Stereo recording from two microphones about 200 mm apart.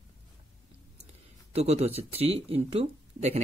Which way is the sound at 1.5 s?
30° right (ahead or behind).